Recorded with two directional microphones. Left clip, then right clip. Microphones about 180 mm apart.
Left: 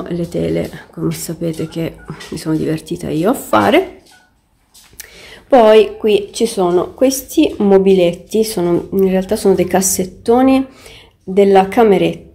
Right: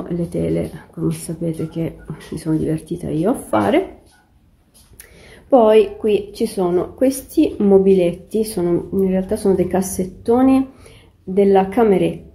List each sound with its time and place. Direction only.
0.0 s speech: 10° left (ahead or behind)
4.9 s speech: 10° left (ahead or behind)